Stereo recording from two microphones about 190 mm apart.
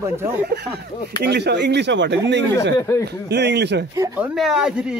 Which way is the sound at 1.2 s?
60° right (ahead or behind).